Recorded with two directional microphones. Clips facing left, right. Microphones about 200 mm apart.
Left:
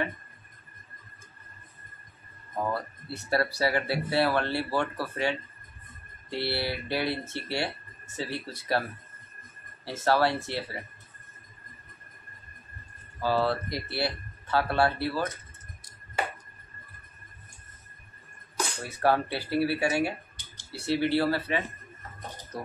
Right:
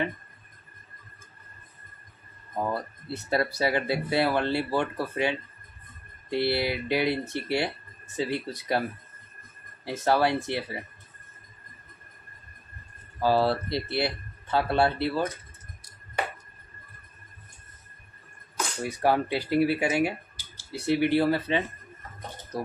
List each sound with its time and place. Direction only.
2.5 s speech: 20° right (ahead or behind)
6.3 s speech: 15° right (ahead or behind)
9.8 s speech: 15° right (ahead or behind)
13.2 s speech: 35° right (ahead or behind)
18.9 s speech: 15° right (ahead or behind)